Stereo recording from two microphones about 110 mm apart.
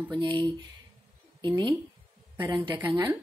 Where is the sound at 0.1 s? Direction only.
45° right (ahead or behind).